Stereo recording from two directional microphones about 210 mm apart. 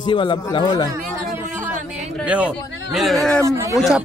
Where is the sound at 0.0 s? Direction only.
20° left (ahead or behind).